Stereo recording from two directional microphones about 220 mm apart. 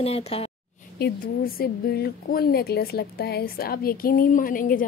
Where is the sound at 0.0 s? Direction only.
25° left (ahead or behind).